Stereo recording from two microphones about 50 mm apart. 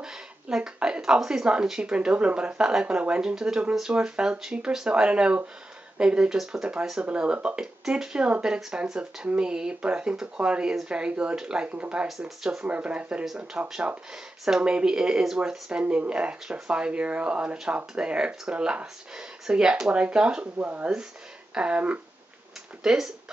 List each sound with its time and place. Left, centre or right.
0.0 s speech: centre
12.2 s speech: centre
12.6 s speech: right
15.8 s speech: right
20.5 s speech: right
22.8 s speech: centre